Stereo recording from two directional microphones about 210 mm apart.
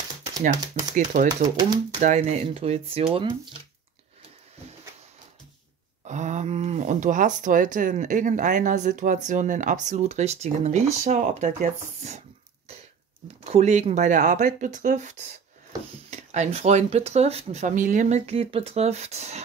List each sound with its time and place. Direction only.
0.9 s speech: 35° right (ahead or behind)
1.3 s speech: 20° right (ahead or behind)
2.0 s speech: 35° right (ahead or behind)
6.0 s speech: 35° right (ahead or behind)
13.4 s speech: 30° right (ahead or behind)